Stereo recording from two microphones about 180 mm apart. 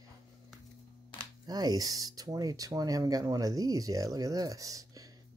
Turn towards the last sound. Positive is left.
turn(degrees=-20)  # may be behind; listen again after turning